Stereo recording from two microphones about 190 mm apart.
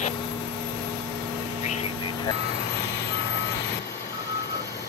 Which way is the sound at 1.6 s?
35° left (ahead or behind).